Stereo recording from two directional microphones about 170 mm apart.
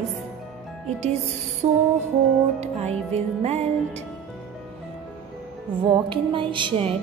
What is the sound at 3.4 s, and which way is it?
Speech, 40° right (ahead or behind).